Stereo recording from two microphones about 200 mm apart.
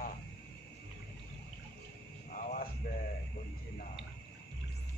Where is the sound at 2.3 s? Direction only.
40° left (ahead or behind).